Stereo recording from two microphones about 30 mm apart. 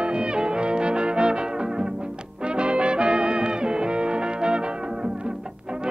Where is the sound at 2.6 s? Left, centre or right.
Right.